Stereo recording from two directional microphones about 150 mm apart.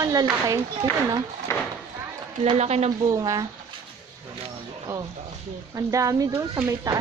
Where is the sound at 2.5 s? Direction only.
45° right (ahead or behind).